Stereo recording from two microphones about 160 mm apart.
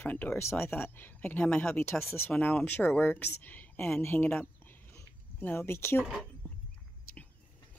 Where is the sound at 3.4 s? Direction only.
10° left (ahead or behind).